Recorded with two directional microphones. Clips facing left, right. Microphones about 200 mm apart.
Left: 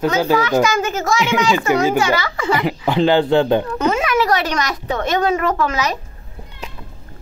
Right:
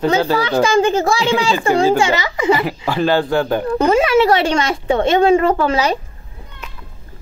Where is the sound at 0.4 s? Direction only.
30° right (ahead or behind).